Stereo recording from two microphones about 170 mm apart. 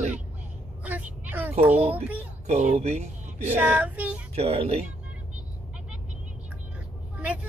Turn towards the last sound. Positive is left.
turn(degrees=-10)  # may be behind; listen again after turning